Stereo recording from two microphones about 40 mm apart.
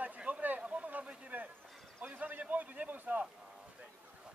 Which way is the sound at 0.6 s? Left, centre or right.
Right.